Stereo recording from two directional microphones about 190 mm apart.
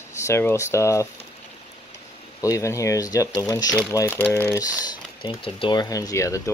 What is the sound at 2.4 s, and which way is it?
Speech, 15° left (ahead or behind).